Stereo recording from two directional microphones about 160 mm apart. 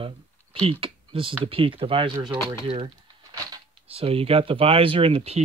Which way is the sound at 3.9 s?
35° right (ahead or behind).